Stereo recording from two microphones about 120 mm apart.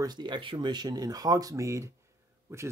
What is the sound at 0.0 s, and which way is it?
Speech, 35° right (ahead or behind).